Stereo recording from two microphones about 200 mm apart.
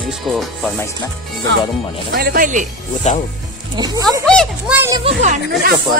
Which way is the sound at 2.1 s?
50° right (ahead or behind).